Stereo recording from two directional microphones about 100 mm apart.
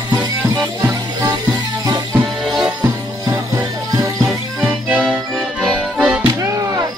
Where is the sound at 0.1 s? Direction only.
35° right (ahead or behind).